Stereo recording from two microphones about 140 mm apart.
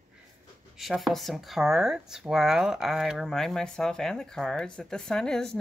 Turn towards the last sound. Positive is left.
turn(degrees=5)  # may be behind; listen again after turning